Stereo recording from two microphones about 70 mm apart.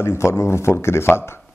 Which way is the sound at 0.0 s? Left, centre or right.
Left.